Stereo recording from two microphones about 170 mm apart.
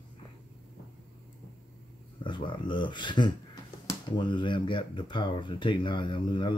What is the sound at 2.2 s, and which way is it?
Speech, 30° left (ahead or behind).